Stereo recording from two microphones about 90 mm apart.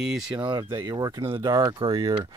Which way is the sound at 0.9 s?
35° right (ahead or behind).